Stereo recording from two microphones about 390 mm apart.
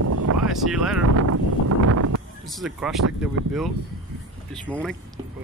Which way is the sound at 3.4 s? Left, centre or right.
Right.